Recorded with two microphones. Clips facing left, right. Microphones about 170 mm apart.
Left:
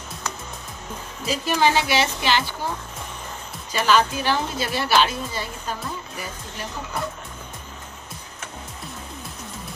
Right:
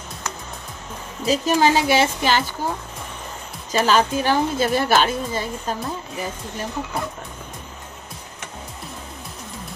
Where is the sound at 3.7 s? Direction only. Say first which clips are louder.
Right 2 dB; 40° right (ahead or behind).